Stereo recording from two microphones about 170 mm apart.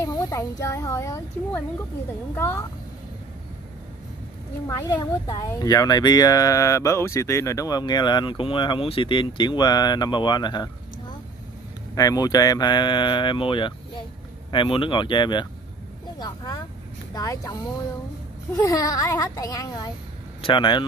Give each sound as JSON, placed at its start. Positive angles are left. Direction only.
{"t": 0.0, "sound": "a child's voice", "side_deg": 20}
{"t": 4.6, "sound": "speech", "side_deg": 20}
{"t": 18.6, "sound": "speech", "side_deg": 20}